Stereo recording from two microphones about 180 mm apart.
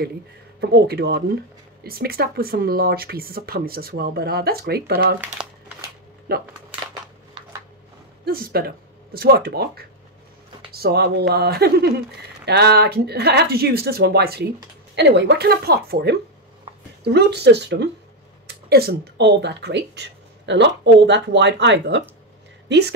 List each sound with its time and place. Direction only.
0.6 s speech: 65° right (ahead or behind)
5.4 s crumpling: 25° right (ahead or behind)
6.3 s speech: 60° right (ahead or behind)
7.4 s a sound: 30° right (ahead or behind)
8.3 s speech: 55° right (ahead or behind)
15.0 s a woman's voice: 75° right (ahead or behind)